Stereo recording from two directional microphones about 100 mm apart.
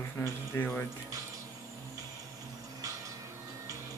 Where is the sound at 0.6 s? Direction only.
20° left (ahead or behind).